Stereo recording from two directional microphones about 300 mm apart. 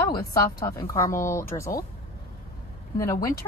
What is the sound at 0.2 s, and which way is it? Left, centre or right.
Speech, centre.